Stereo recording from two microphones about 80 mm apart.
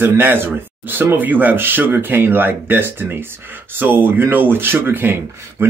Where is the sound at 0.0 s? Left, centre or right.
Right.